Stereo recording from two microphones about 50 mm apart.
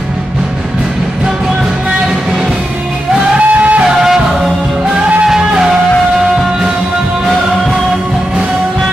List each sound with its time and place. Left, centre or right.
3.3 s music: right
4.0 s music: centre
6.1 s music: centre